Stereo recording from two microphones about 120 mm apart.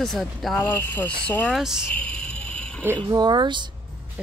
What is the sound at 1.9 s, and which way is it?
Music, 10° left (ahead or behind).